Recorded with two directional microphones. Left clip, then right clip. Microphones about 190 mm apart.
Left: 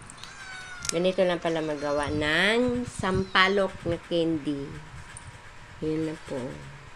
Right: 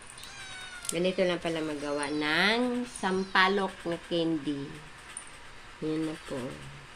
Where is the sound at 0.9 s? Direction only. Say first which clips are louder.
Left 4 dB; 20° left (ahead or behind).